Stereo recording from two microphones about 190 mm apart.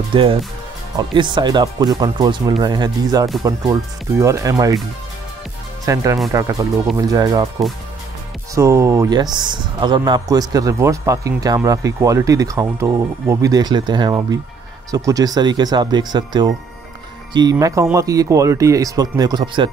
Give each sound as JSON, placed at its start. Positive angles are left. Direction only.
{"t": 0.1, "sound": "speech", "side_deg": -25}
{"t": 5.9, "sound": "speech", "side_deg": -20}
{"t": 8.5, "sound": "speech", "side_deg": -15}